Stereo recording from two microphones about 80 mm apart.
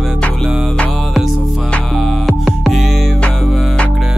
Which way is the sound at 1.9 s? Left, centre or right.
Centre.